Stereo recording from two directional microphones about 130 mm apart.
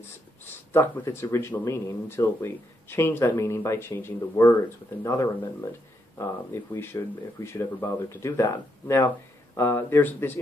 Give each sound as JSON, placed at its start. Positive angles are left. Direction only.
{"t": 0.7, "sound": "speech", "side_deg": 20}